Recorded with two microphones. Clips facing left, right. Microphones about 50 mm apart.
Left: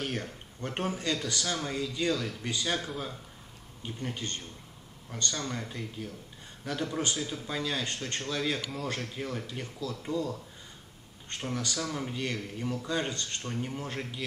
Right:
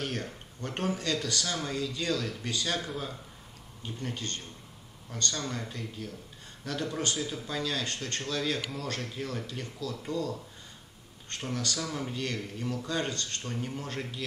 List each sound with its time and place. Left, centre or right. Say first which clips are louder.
0.0 s a sound: even; centre
0.6 s speech: right 1 dB; centre
2.9 s speech: even; centre
3.8 s speech: even; centre
7.2 s speech: right 1 dB; centre
7.4 s speech: left 1 dB; centre
11.4 s speech: even; centre